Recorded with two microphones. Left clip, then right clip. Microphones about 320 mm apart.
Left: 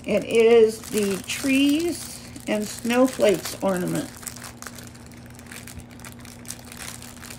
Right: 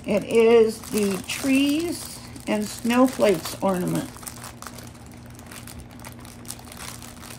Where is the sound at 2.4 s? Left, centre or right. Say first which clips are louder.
Even; centre.